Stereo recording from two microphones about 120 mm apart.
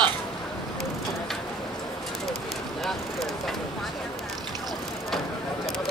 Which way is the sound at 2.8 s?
Centre (ahead or behind).